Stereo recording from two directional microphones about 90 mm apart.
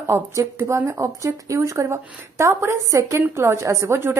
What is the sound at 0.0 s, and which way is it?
A woman's voice, 30° right (ahead or behind).